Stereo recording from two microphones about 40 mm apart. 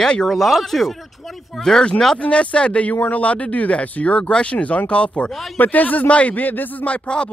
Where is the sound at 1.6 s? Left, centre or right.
Centre.